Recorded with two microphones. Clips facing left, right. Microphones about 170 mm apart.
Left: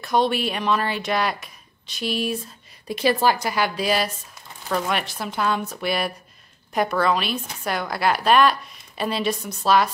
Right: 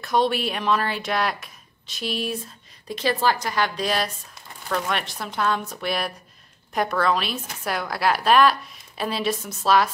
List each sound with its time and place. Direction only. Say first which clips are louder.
0.0 s speech: left 1 dB; centre (ahead or behind)
3.0 s a woman's voice: left 3 dB; 10° left (ahead or behind)